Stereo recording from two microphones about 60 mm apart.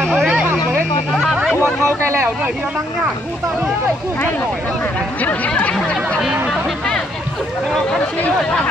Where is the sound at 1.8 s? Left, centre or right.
Right.